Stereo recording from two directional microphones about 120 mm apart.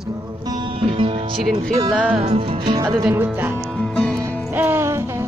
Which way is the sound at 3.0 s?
15° right (ahead or behind).